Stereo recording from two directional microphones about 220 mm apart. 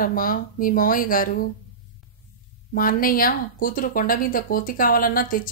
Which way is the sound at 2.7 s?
40° left (ahead or behind).